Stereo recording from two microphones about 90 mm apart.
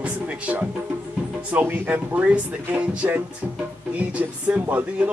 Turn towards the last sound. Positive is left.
turn(degrees=-15)  # may be behind; listen again after turning